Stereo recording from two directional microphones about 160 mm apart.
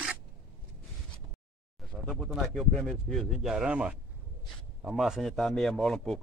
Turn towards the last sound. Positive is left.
turn(degrees=5)  # may be behind; listen again after turning